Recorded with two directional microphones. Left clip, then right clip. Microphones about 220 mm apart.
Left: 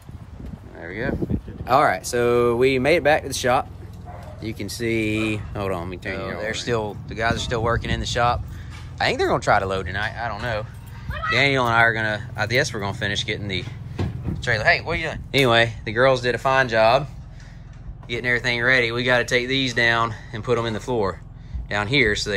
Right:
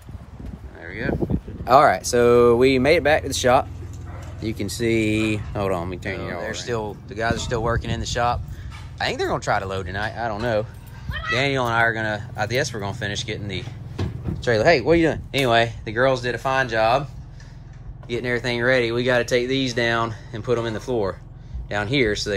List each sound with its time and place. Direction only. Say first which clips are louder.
0.7 s speech: left 1 dB; 10° right (ahead or behind)
1.6 s speech: right 3 dB; 5° left (ahead or behind)
6.4 s speech: left 4 dB; 15° right (ahead or behind); by 10.7 s 30° right (ahead or behind)
11.2 s speech: left 3 dB; 15° right (ahead or behind)
14.4 s speech: right 2 dB; 30° right (ahead or behind)
15.3 s speech: left 4 dB; 10° right (ahead or behind)
18.0 s speech: left 2 dB; 15° right (ahead or behind)